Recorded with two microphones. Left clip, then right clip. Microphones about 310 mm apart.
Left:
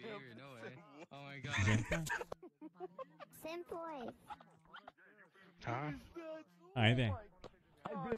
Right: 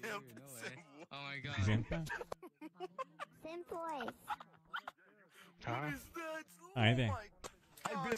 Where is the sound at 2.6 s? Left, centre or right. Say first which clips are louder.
Right 3 dB; right.